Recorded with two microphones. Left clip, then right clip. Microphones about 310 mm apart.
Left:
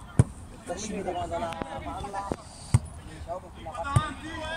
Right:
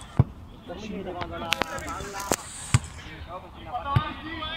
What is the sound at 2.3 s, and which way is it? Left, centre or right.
Basketball bounce, right.